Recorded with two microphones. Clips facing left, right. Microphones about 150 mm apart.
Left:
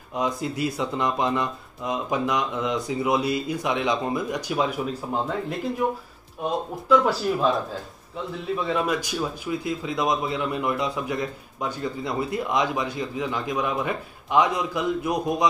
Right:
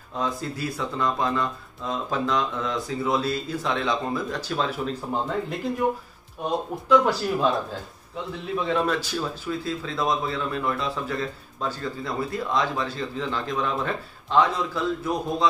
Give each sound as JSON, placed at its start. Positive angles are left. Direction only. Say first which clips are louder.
{"t": 0.1, "sound": "speech", "louder": "left 2 dB", "side_deg": 15}